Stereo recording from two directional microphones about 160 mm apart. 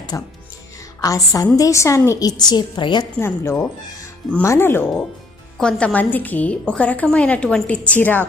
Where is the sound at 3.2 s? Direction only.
15° left (ahead or behind).